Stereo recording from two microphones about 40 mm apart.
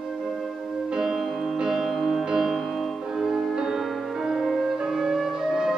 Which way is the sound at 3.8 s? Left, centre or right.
Centre.